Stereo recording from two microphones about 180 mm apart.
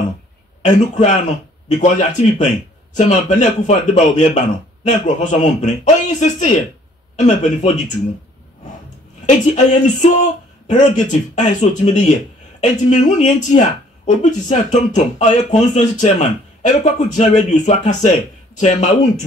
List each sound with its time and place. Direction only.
0.6 s speech: 40° left (ahead or behind)
9.2 s speech: 40° left (ahead or behind)